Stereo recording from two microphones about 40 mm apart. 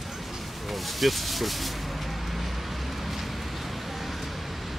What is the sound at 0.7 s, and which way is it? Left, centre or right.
Speech, centre.